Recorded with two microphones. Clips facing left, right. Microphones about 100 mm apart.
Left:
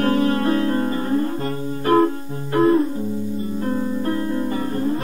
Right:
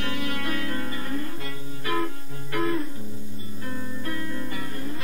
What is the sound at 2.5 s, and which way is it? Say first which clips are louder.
Music: left 11 dB; 35° left (ahead or behind).